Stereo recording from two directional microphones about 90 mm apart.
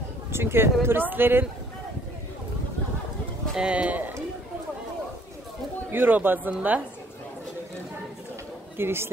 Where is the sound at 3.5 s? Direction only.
10° right (ahead or behind).